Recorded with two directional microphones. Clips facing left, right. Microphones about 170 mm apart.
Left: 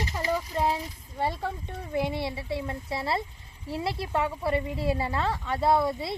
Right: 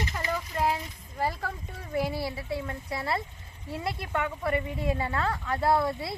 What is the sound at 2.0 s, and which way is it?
Speech, 25° left (ahead or behind).